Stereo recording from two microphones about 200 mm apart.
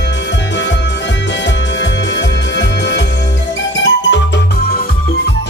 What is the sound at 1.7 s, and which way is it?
Music, 60° left (ahead or behind).